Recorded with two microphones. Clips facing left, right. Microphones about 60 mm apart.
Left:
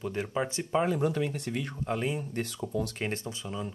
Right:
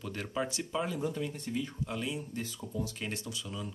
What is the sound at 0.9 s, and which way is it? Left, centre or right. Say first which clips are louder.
Speech: left 6 dB; left.